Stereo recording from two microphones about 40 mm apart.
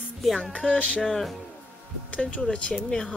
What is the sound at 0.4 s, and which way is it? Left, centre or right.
Music, left.